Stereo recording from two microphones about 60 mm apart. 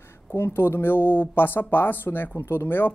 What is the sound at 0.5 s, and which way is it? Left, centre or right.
Speech, left.